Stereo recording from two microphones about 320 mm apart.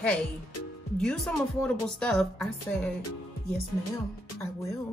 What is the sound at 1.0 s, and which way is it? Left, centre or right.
Speech, centre.